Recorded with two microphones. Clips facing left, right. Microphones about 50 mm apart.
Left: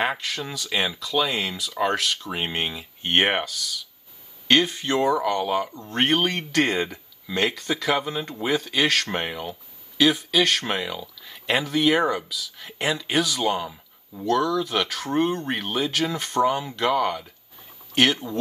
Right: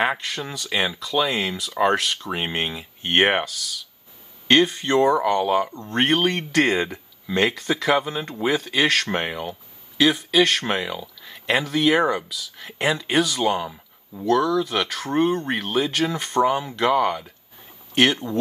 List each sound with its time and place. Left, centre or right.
0.0 s speech: centre
4.9 s speech: right
5.2 s speech: centre
6.1 s speech: centre